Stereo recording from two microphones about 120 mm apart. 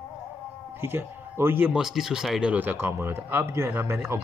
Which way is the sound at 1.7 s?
Centre (ahead or behind).